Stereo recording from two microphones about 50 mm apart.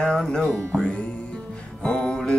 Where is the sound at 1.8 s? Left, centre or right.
Centre.